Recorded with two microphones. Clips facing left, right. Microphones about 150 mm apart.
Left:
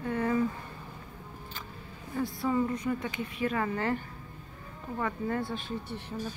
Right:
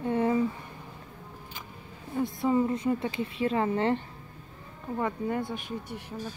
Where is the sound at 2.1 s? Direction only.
20° right (ahead or behind).